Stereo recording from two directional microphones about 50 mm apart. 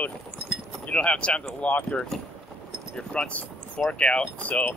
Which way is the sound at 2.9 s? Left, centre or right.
Centre.